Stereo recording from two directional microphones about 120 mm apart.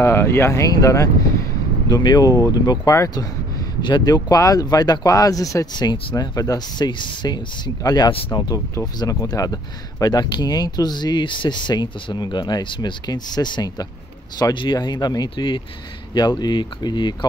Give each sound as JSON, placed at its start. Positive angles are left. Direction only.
{"t": 0.0, "sound": "speech", "side_deg": 20}